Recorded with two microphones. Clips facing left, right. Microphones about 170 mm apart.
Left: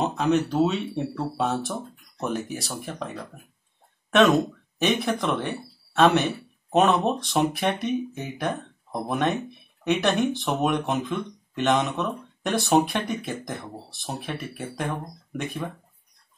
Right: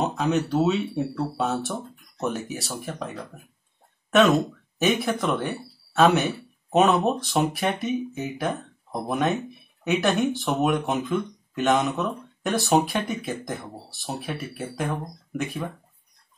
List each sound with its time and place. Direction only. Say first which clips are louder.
0.0 s speech: left 1 dB; centre (ahead or behind)